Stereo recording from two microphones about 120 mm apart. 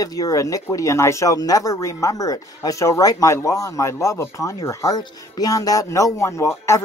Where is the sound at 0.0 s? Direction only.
30° left (ahead or behind).